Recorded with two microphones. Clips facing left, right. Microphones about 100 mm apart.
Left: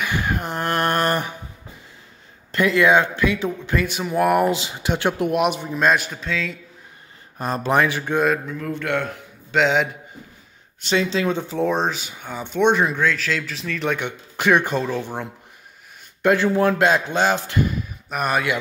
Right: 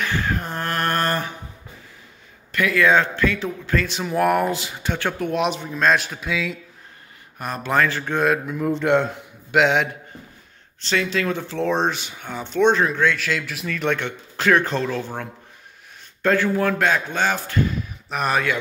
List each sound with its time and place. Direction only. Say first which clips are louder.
0.0 s a sound: even; 15° left (ahead or behind)
2.5 s a man's voice: left 1 dB; 25° left (ahead or behind)
3.8 s speech: left 1 dB; 5° left (ahead or behind)
4.5 s a man's voice: left 3 dB; 20° left (ahead or behind)
5.3 s a man's voice: left 2 dB; 5° left (ahead or behind)
7.3 s a man's voice: left 4 dB; 30° left (ahead or behind)
7.7 s speech: left 1 dB; 15° left (ahead or behind)
8.2 s a man's voice: even; centre (ahead or behind)
8.5 s speech: right 5 dB; 20° right (ahead or behind)
9.5 s a man's voice: right 1 dB; centre (ahead or behind)
10.8 s speech: left 2 dB; 20° left (ahead or behind)
13.0 s a man's voice: right 1 dB; centre (ahead or behind)
13.9 s a man's voice: even; 10° left (ahead or behind)
17.6 s a sound: even; centre (ahead or behind)